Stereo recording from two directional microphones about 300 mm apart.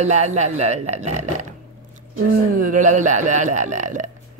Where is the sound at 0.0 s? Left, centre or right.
Right.